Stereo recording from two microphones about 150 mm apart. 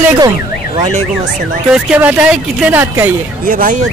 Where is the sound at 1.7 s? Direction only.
10° right (ahead or behind).